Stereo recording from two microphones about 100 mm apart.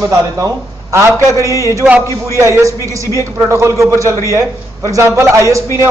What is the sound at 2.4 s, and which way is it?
Speech, 30° right (ahead or behind).